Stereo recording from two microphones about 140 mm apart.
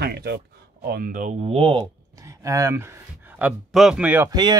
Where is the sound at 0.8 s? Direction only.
90° right; by 1.3 s 70° right (ahead or behind).